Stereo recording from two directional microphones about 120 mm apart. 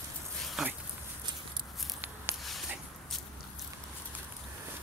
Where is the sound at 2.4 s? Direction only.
Centre (ahead or behind).